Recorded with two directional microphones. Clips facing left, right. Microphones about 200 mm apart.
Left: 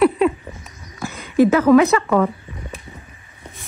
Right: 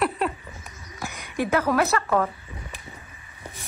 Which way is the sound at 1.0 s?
15° right (ahead or behind).